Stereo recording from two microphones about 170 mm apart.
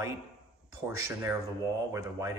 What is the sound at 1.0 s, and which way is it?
Speech, 20° right (ahead or behind).